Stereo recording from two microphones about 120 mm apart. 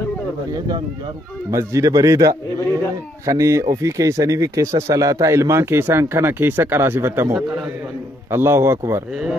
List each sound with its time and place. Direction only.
1.5 s speech: 25° right (ahead or behind)
9.1 s speech: 5° right (ahead or behind)